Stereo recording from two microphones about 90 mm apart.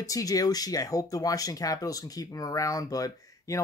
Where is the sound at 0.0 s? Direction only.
40° left (ahead or behind).